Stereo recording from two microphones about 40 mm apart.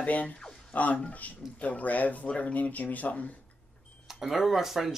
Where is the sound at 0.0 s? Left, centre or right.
Left.